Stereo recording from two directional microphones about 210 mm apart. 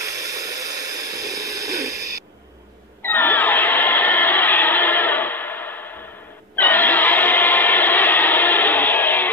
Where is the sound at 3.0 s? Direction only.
10° left (ahead or behind).